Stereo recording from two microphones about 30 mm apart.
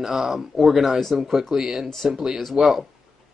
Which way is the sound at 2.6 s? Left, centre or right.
Right.